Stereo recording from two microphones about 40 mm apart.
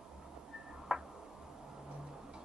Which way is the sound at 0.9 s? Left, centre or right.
Centre.